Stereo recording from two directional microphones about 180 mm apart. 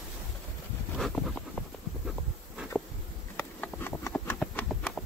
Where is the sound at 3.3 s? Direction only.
10° left (ahead or behind).